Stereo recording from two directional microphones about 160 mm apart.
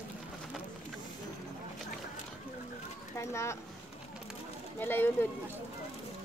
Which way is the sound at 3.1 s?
15° left (ahead or behind).